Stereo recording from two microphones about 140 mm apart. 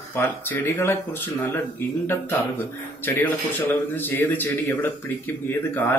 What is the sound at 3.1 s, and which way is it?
Speech, 15° left (ahead or behind).